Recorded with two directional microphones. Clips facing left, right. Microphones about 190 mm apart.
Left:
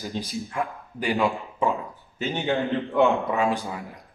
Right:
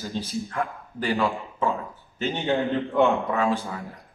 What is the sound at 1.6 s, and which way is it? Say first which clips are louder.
Dog: left 1 dB; 15° left (ahead or behind).